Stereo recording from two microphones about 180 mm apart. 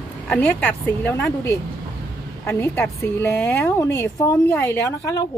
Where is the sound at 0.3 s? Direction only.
10° left (ahead or behind).